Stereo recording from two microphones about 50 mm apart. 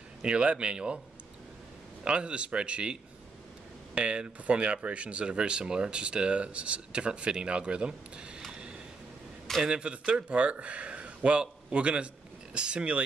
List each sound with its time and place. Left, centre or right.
0.2 s speech: right
2.0 s speech: right
8.5 s a sound: centre
9.7 s speech: right